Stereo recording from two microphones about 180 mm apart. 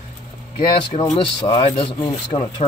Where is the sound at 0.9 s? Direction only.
35° left (ahead or behind).